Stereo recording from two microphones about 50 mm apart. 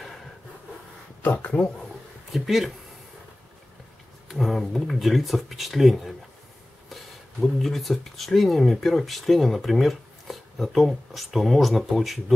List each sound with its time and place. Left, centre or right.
1.2 s speech: left
2.3 s speech: centre
4.3 s speech: centre
6.9 s speech: centre